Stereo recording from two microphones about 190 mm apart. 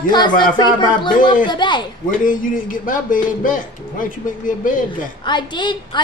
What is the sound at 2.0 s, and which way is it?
A man's voice, 45° left (ahead or behind).